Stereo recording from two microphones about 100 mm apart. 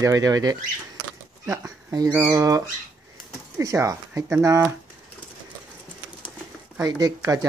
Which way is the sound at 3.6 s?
35° right (ahead or behind).